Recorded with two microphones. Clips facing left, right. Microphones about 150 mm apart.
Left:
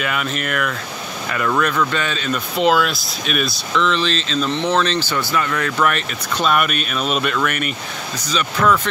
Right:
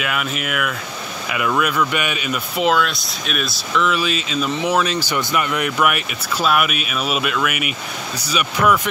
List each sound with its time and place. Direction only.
0.0 s speech: 5° right (ahead or behind)
2.7 s speech: centre (ahead or behind)